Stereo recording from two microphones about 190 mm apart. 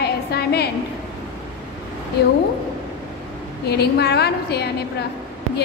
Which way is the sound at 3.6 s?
60° left (ahead or behind).